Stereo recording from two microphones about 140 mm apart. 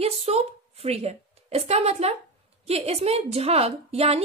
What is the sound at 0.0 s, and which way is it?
A woman's voice, 45° right (ahead or behind).